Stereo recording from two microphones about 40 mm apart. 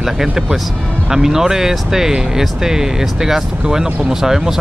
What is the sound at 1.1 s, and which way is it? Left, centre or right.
Speech, centre.